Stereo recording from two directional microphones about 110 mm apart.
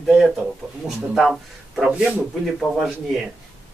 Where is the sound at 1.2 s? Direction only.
Centre (ahead or behind).